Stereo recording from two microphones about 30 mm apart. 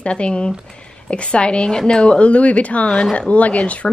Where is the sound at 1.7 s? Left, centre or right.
Left.